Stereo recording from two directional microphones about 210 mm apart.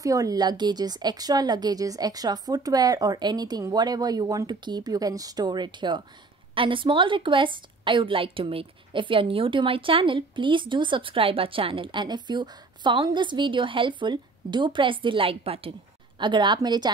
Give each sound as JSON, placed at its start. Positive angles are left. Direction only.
{"t": 0.0, "sound": "a woman's voice", "side_deg": -15}